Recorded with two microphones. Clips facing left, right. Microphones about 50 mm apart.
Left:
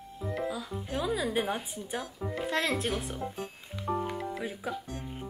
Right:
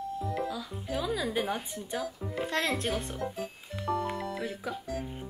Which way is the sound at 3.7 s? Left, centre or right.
Right.